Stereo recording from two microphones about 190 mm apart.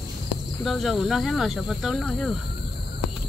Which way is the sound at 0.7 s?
Centre (ahead or behind).